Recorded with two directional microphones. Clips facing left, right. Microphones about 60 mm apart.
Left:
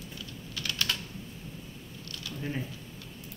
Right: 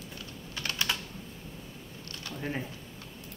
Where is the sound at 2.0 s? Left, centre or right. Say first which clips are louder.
Even; right.